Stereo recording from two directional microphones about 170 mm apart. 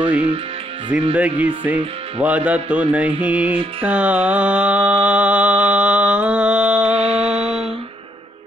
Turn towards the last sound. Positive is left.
turn(degrees=-40)  # may be behind; listen again after turning